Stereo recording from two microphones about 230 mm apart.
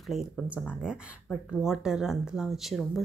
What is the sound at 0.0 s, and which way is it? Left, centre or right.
Speech, centre.